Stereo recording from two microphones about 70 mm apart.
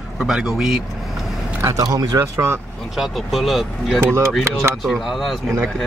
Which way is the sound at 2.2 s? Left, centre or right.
Right.